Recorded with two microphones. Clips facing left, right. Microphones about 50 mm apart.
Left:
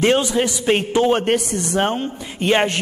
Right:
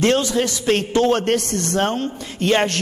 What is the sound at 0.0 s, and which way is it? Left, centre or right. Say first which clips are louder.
A man's voice: left 1 dB; centre.